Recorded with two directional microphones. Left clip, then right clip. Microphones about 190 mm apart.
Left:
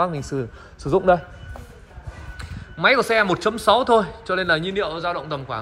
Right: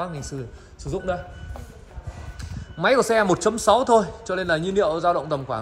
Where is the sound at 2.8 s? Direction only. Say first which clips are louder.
Left 1 dB; 20° right (ahead or behind).